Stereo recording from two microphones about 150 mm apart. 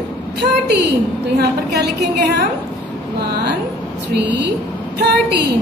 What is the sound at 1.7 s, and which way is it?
Speech, 90° right.